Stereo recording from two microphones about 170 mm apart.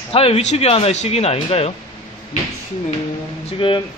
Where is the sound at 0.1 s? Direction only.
35° left (ahead or behind).